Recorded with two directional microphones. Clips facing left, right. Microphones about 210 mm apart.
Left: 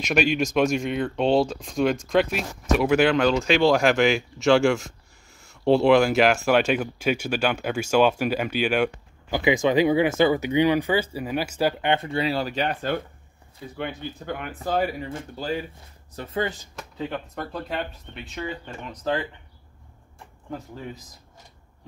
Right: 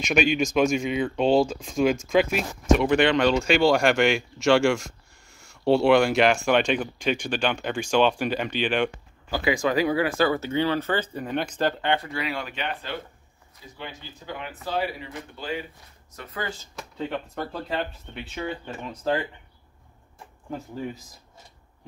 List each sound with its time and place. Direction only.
0.1 s speech: centre (ahead or behind)
9.3 s speech: 20° left (ahead or behind)
11.9 s speech: 25° left (ahead or behind); by 13.0 s 45° left (ahead or behind)
13.7 s speech: 55° left (ahead or behind); by 15.6 s 40° left (ahead or behind)
16.2 s speech: 25° left (ahead or behind)
16.7 s speech: centre (ahead or behind)